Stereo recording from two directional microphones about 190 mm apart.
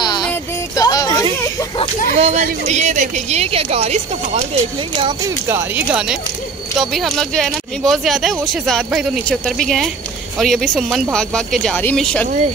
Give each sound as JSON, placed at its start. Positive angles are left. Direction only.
{"t": 0.0, "sound": "a sound", "side_deg": 20}
{"t": 2.1, "sound": "speech", "side_deg": -35}
{"t": 5.5, "sound": "speech", "side_deg": -10}